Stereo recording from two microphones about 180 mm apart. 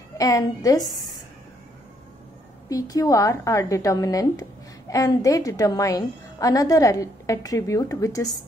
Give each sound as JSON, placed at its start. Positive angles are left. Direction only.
{"t": 0.2, "sound": "a woman's voice", "side_deg": 20}
{"t": 2.7, "sound": "a woman's voice", "side_deg": 20}